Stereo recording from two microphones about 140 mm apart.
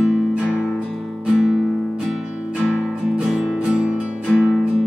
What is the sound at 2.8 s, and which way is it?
Music, 5° right (ahead or behind).